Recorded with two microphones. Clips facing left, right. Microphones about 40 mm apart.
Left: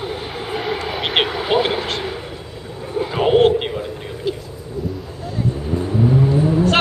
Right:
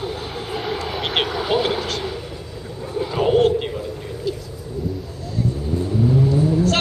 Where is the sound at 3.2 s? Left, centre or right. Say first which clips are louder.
Left 3 dB; left.